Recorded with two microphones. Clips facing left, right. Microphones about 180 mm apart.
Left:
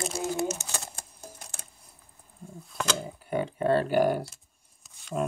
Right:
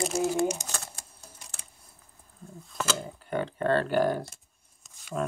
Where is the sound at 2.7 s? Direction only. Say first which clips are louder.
Even; centre (ahead or behind).